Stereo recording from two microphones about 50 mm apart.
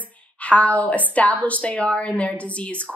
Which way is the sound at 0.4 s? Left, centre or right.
Left.